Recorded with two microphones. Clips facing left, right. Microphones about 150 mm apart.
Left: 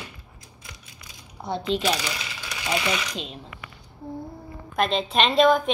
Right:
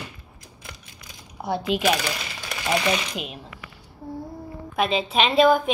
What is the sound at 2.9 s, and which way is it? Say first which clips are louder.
Speech: right 3 dB; 30° right (ahead or behind).